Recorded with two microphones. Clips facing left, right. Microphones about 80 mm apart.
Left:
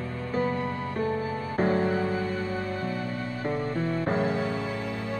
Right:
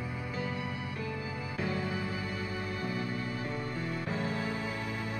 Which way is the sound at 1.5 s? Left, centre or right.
Left.